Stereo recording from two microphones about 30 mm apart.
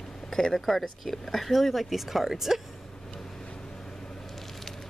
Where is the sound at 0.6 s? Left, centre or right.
Centre.